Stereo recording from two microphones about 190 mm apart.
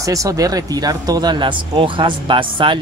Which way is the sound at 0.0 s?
15° right (ahead or behind).